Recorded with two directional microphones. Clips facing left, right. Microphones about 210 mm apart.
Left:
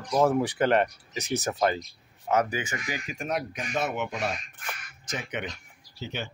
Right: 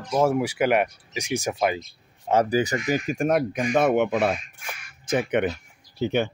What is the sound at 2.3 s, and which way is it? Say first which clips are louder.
Speech: right 6 dB; 35° right (ahead or behind).